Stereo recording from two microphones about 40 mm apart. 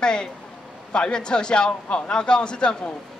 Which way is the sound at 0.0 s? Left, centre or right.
Centre.